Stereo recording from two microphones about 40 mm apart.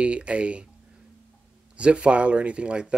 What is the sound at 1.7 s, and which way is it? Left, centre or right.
Speech, right.